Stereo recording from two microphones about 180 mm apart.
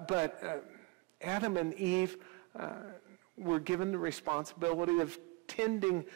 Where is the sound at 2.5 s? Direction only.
20° right (ahead or behind).